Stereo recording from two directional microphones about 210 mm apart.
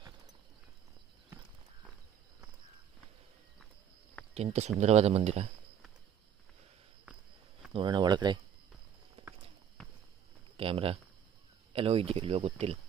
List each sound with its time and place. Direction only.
4.3 s speech: 30° right (ahead or behind)
7.7 s speech: 20° right (ahead or behind)
10.6 s speech: 25° right (ahead or behind)